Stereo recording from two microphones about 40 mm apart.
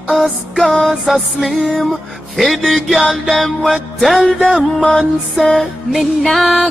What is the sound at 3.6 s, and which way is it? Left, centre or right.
Speech, centre.